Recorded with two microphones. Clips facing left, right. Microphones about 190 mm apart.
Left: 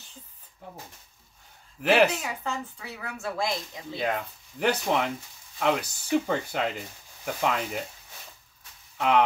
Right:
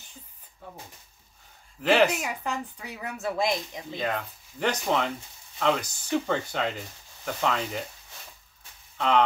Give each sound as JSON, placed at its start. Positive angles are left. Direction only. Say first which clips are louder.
{"t": 1.8, "sound": "speech", "louder": "even", "side_deg": 10}
{"t": 2.0, "sound": "speech", "louder": "right 1 dB", "side_deg": -10}
{"t": 3.9, "sound": "speech", "louder": "left 1 dB", "side_deg": 10}
{"t": 8.9, "sound": "speech", "louder": "left 1 dB", "side_deg": 10}